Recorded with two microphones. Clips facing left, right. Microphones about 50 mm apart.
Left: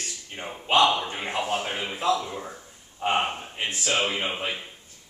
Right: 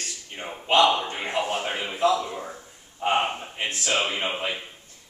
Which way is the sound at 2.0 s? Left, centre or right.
Centre.